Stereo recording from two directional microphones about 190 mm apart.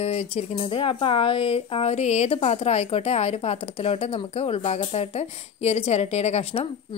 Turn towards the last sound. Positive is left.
turn(degrees=30)  # may be behind; listen again after turning